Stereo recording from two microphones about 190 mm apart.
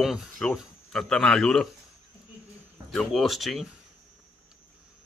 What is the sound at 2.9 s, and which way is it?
Speech, centre (ahead or behind).